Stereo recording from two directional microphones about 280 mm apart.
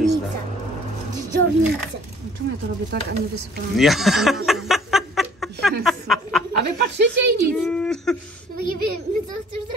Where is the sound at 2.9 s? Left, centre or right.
Right.